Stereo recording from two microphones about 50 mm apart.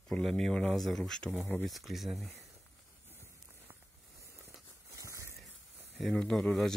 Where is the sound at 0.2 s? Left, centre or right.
Centre.